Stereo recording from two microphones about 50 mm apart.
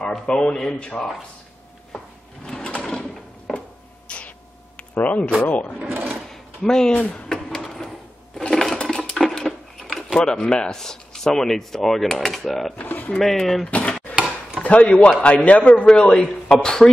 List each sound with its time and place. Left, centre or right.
0.3 s a man's voice: centre
2.4 s sewing machine: centre
4.9 s a man's voice: left
5.9 s sewing machine: right
6.2 s a sound: centre
7.0 s a man's voice: left
7.2 s a sound: centre
8.4 s sewing machine: centre
9.3 s a sound: centre
10.2 s speech: centre
12.7 s speech: left
13.2 s speech: centre
13.7 s a man's voice: left